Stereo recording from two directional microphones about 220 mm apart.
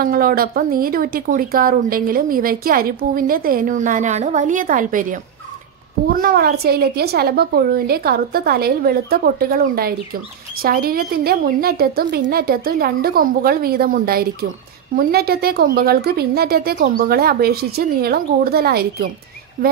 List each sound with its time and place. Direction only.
0.0 s a woman's voice: 40° right (ahead or behind)